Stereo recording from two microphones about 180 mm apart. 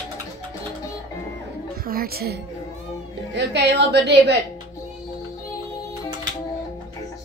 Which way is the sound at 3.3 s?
70° right (ahead or behind).